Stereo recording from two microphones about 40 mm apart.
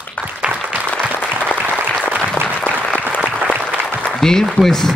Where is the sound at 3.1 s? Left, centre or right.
Left.